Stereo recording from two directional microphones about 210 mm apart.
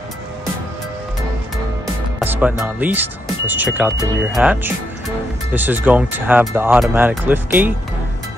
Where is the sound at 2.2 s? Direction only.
10° right (ahead or behind).